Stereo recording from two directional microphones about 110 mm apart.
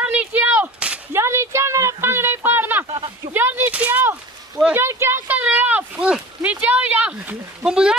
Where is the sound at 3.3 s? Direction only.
20° right (ahead or behind).